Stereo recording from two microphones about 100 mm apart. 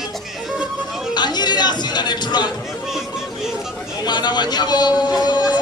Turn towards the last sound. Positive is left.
turn(degrees=45)  # may be behind; listen again after turning